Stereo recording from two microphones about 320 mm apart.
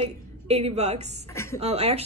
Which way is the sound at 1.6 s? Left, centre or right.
Centre.